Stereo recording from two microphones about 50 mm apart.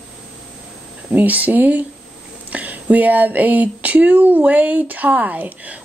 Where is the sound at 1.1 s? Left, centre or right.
Right.